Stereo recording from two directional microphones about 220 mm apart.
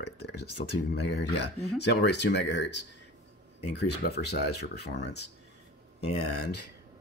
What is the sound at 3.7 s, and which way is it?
Speech, 50° left (ahead or behind).